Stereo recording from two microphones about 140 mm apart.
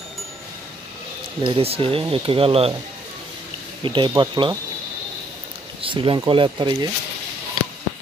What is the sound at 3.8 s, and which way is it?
Speech, 35° right (ahead or behind).